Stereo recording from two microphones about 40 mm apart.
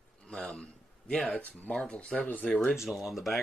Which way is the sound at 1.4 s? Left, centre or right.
Left.